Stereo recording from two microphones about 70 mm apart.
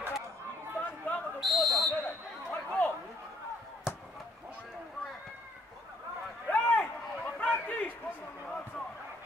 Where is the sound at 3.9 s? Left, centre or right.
Centre.